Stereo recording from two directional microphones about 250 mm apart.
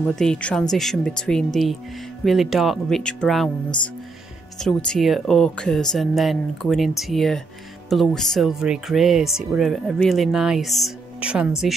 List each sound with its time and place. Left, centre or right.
0.0 s speech: centre
4.6 s speech: centre